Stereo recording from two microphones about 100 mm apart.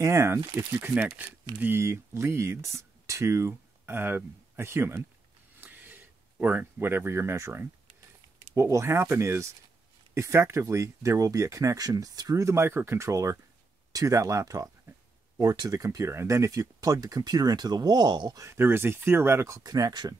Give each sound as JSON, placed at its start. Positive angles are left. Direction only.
{"t": 0.0, "sound": "speech", "side_deg": -25}
{"t": 0.7, "sound": "speech", "side_deg": -15}
{"t": 5.6, "sound": "a sound", "side_deg": -20}
{"t": 6.4, "sound": "speech", "side_deg": -15}
{"t": 18.4, "sound": "speech", "side_deg": -25}